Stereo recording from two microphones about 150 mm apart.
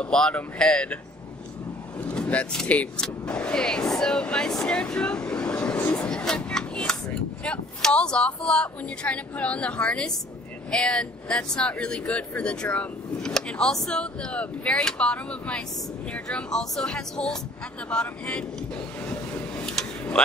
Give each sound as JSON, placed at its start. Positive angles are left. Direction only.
{"t": 0.0, "sound": "speech", "side_deg": 5}
{"t": 2.0, "sound": "speech", "side_deg": 10}
{"t": 19.0, "sound": "vehicle", "side_deg": 5}